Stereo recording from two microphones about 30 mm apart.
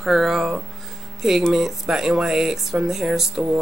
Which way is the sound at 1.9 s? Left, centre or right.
Right.